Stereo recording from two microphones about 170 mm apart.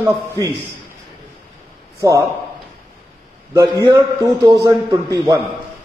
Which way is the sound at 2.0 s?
20° right (ahead or behind).